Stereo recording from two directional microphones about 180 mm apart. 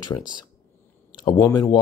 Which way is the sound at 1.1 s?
25° left (ahead or behind).